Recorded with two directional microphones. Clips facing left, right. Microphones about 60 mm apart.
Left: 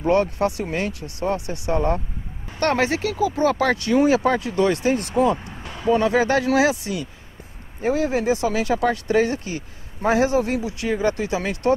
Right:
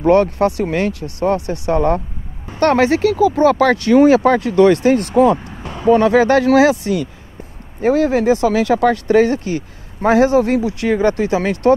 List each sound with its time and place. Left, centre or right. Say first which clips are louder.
0.0 s speech: right 7 dB; right
2.6 s speech: right 8 dB; right
5.6 s speech: right 7 dB; right